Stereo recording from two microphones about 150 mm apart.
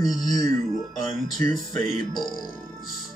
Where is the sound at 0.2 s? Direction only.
25° left (ahead or behind).